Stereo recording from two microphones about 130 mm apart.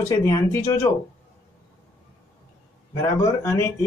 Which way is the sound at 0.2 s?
20° left (ahead or behind).